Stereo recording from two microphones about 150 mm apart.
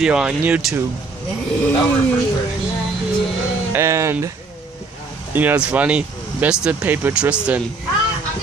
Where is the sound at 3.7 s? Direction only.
20° right (ahead or behind).